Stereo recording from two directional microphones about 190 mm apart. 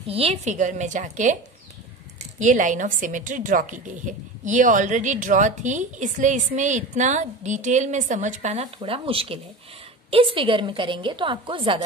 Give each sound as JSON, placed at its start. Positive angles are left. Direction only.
{"t": 0.0, "sound": "a woman's voice", "side_deg": -30}